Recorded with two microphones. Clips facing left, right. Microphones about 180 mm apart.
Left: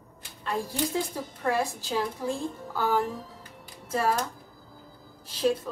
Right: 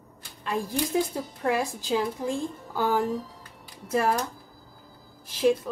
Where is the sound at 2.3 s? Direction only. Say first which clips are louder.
Right 1 dB; 15° right (ahead or behind).